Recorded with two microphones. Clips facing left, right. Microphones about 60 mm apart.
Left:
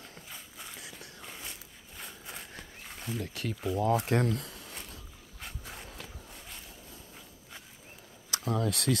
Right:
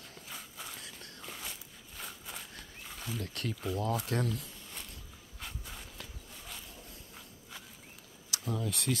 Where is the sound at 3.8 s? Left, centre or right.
Left.